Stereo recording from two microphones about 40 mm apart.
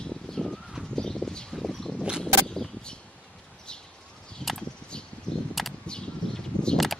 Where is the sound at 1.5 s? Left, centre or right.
Centre.